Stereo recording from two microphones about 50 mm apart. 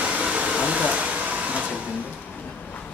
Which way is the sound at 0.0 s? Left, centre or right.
Right.